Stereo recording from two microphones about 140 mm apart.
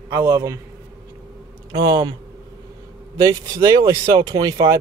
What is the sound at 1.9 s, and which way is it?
Speech, 30° right (ahead or behind).